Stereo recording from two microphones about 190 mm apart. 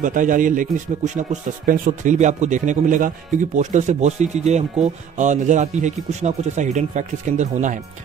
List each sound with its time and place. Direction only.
0.0 s speech: 45° right (ahead or behind)